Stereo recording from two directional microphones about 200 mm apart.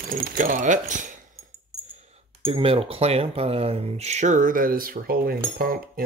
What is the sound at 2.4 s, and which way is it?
Speech, 30° right (ahead or behind).